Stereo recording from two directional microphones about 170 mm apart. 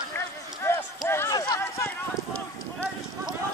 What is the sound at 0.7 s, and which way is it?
Run, 15° left (ahead or behind).